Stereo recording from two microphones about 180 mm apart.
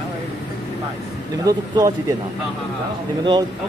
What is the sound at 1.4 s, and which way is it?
Speech, 20° right (ahead or behind).